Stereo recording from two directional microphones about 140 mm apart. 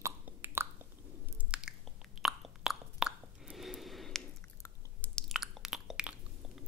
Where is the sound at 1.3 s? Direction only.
10° right (ahead or behind).